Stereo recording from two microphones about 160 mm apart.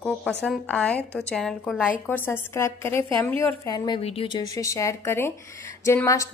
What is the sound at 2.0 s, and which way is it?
A woman's voice, 15° left (ahead or behind).